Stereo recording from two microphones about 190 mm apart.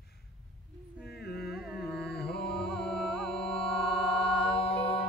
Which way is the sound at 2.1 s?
55° left (ahead or behind).